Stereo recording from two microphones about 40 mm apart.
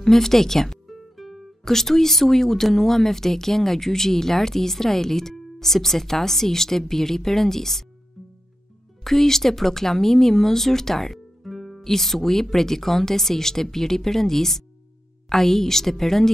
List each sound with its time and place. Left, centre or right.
0.0 s speech: centre
0.8 s music: centre
1.6 s speech: centre
9.0 s speech: centre